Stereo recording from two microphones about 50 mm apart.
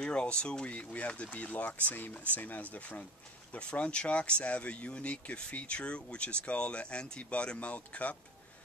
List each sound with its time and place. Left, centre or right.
0.0 s speech: left
3.5 s speech: left